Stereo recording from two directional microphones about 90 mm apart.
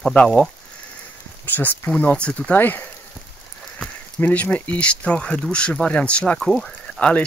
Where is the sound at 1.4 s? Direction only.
20° left (ahead or behind).